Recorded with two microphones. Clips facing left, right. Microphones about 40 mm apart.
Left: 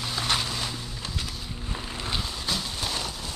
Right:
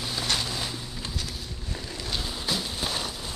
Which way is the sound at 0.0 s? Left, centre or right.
Centre.